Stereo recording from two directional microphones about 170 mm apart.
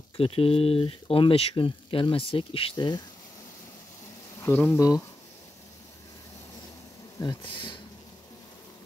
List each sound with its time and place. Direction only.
0.2 s speech: 35° left (ahead or behind)
4.4 s speech: 15° left (ahead or behind)
7.2 s speech: 25° left (ahead or behind)